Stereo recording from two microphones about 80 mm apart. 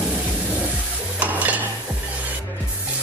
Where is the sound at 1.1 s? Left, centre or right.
Centre.